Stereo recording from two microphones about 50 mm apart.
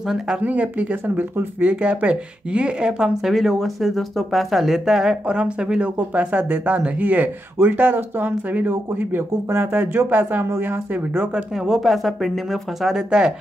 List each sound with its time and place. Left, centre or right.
0.4 s speech: right
3.3 s speech: centre
5.3 s speech: centre
5.9 s speech: right
11.6 s speech: centre
12.8 s speech: centre